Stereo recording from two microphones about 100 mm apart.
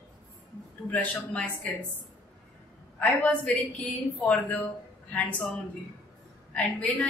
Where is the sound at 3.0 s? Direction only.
15° left (ahead or behind).